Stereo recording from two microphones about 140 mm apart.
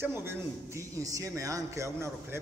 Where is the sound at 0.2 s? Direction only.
20° right (ahead or behind).